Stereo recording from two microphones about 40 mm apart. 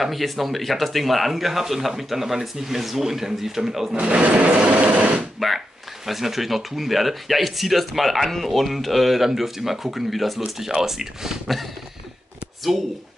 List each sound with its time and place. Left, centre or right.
0.0 s speech: centre
4.0 s sewing machine: right
5.4 s speech: centre